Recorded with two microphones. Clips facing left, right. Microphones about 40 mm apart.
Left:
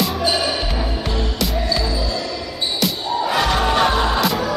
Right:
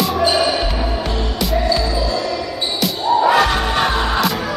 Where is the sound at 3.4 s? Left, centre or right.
Centre.